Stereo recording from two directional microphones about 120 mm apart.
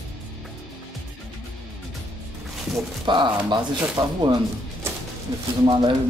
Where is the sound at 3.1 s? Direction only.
40° right (ahead or behind).